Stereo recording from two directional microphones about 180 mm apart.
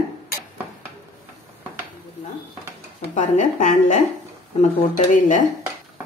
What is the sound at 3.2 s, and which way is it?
Speech, 45° left (ahead or behind).